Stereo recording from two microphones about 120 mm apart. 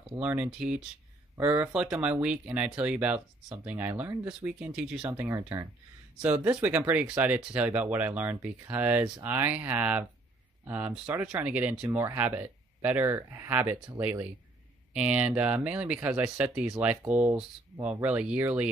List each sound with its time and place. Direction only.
0.2 s speech: 10° right (ahead or behind)
5.1 s speech: 20° right (ahead or behind)
6.1 s speech: 10° right (ahead or behind)
11.1 s speech: 15° right (ahead or behind)
15.0 s speech: 10° right (ahead or behind)